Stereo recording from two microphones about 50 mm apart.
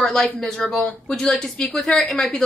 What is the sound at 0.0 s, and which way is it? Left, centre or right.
A woman's voice, centre.